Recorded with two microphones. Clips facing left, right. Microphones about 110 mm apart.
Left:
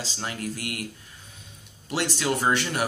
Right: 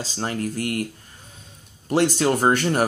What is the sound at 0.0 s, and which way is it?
Speech, 40° right (ahead or behind).